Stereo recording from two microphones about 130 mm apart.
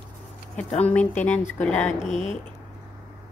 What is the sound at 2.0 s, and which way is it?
Speech, 60° left (ahead or behind).